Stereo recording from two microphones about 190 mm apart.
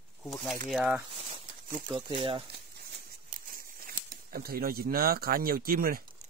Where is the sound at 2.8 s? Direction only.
55° right (ahead or behind).